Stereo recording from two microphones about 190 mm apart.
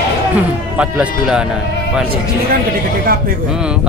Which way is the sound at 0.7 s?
5° right (ahead or behind).